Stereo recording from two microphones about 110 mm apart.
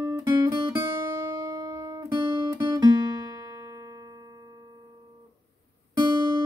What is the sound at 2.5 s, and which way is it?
Music, 40° right (ahead or behind).